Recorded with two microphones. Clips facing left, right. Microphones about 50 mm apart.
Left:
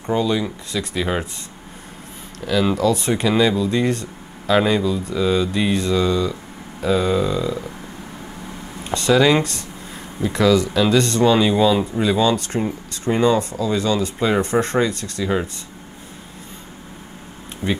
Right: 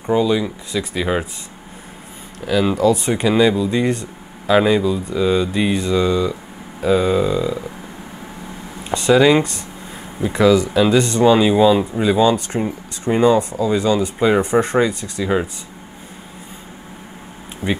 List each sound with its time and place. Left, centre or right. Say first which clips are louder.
0.0 s speech: right 3 dB; centre
2.4 s speech: right 2 dB; centre
8.8 s speech: right 3 dB; centre
17.6 s speech: right 1 dB; right